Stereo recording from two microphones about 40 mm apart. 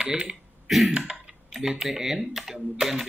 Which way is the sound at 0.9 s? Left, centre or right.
Right.